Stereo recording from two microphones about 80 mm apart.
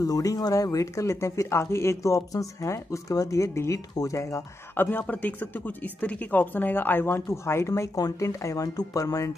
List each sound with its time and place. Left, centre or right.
0.0 s speech: left